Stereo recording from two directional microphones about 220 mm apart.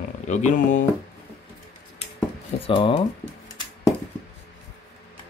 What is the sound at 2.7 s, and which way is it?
Speech, 25° left (ahead or behind).